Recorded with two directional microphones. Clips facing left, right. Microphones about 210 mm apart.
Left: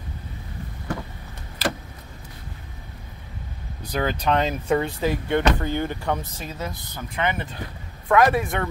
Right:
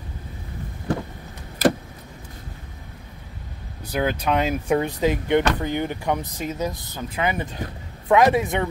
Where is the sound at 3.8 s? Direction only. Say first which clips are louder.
Right 2 dB; 5° right (ahead or behind).